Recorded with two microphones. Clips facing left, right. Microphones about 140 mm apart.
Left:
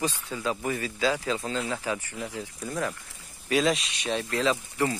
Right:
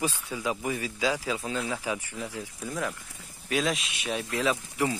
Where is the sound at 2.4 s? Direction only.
Centre (ahead or behind).